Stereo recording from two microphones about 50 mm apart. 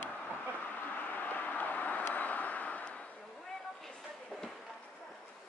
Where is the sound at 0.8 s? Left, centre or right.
Left.